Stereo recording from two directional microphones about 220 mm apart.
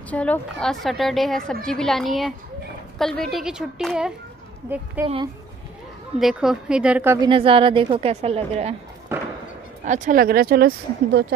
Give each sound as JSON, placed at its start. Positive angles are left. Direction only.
{"t": 0.1, "sound": "a woman's voice", "side_deg": 5}
{"t": 5.0, "sound": "a woman's voice", "side_deg": -20}
{"t": 6.1, "sound": "a woman's voice", "side_deg": 0}
{"t": 7.2, "sound": "a woman's voice", "side_deg": -25}
{"t": 9.1, "sound": "a sound", "side_deg": -10}
{"t": 9.8, "sound": "speech", "side_deg": -35}